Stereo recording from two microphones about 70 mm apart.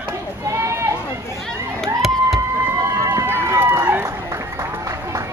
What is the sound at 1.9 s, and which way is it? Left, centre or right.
Crowd, centre.